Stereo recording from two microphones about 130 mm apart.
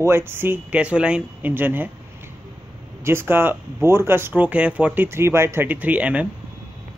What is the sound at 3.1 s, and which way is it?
Speech, 15° right (ahead or behind).